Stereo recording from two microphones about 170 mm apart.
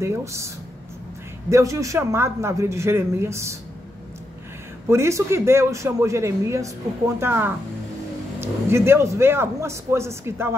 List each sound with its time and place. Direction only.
0.0 s a man's voice: 15° right (ahead or behind)
1.5 s a man's voice: 20° right (ahead or behind)
4.8 s a man's voice: 15° right (ahead or behind)